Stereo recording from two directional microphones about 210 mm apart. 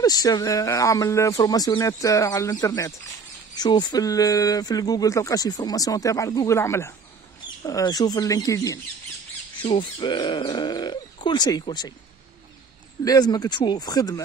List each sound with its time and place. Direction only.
0.0 s speech: 20° left (ahead or behind)
13.0 s speech: 20° left (ahead or behind)